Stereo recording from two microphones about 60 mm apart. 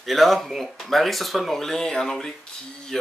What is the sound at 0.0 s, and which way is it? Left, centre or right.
Speech, centre.